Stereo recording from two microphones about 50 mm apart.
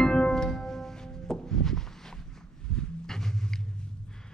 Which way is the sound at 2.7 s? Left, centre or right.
Centre.